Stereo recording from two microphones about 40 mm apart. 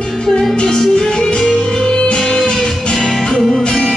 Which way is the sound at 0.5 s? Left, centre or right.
Centre.